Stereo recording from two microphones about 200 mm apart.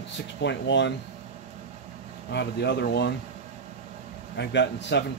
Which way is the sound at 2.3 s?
60° left (ahead or behind).